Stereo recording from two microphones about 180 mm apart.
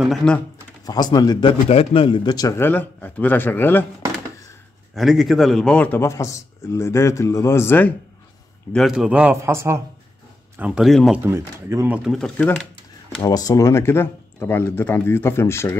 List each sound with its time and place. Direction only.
0.0 s speech: centre (ahead or behind)
0.8 s speech: 20° left (ahead or behind)
4.9 s a man's voice: centre (ahead or behind)
8.7 s a man's voice: centre (ahead or behind)
10.6 s speech: 5° right (ahead or behind)
11.2 s a man's voice: 15° right (ahead or behind)
12.0 s speech: centre (ahead or behind)
13.2 s a man's voice: 20° left (ahead or behind)